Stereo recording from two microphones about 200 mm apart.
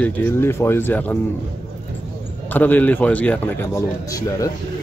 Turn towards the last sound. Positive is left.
turn(degrees=15)  # may be behind; listen again after turning